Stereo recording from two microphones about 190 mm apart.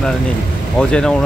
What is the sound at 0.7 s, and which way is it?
Speech, 5° left (ahead or behind).